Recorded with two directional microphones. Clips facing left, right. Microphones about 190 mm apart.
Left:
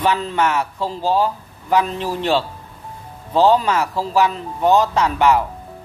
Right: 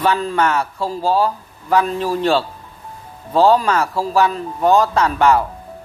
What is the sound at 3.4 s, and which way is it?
A man's voice, 20° left (ahead or behind).